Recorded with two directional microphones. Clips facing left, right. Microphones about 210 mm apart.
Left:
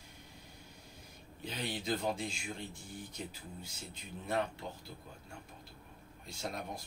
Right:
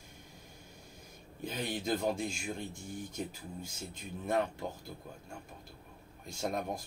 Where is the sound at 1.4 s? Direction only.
45° right (ahead or behind).